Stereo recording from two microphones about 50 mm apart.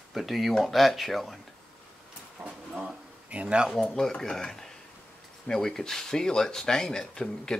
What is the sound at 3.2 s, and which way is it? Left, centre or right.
Speech, right.